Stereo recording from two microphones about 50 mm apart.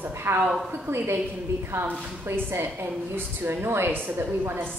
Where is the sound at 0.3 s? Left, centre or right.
Right.